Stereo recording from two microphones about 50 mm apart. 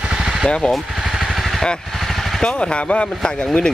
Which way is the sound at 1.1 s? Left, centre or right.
Centre.